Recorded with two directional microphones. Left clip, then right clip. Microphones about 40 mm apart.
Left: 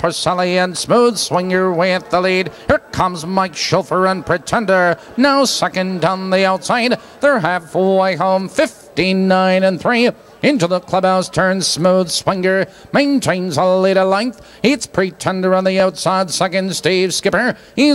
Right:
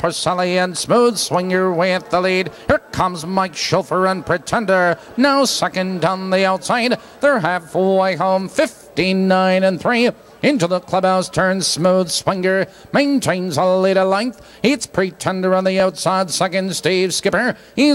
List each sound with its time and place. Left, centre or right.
0.0 s speech: right